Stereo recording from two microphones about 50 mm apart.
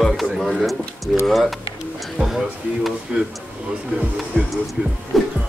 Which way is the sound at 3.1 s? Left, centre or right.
Right.